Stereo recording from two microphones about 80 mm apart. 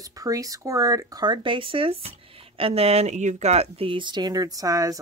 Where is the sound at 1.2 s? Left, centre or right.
Right.